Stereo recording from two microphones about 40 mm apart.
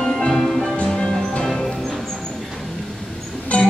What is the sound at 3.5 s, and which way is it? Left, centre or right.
Music, left.